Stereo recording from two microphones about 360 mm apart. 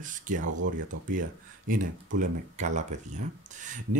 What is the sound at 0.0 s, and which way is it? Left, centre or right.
Speech, right.